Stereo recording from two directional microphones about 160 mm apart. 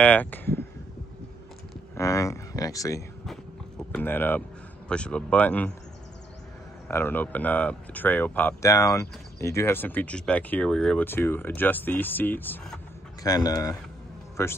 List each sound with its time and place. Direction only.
0.0 s speech: 10° left (ahead or behind)
2.0 s a sound: 20° left (ahead or behind)
3.3 s a sound: 5° left (ahead or behind)
4.8 s speech: 5° left (ahead or behind)
6.9 s speech: 15° left (ahead or behind)
13.2 s speech: 25° left (ahead or behind)